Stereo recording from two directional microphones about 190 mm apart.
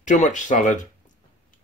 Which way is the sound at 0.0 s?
40° left (ahead or behind).